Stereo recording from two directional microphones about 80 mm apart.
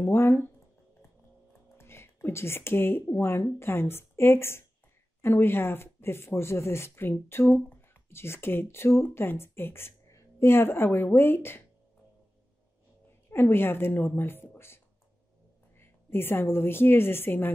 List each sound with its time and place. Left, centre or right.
0.0 s a woman's voice: left
1.8 s a woman's voice: left
13.3 s a woman's voice: left
15.8 s a woman's voice: left